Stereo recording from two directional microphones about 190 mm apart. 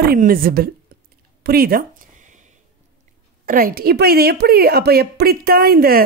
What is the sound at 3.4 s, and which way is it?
A woman's voice, 50° right (ahead or behind).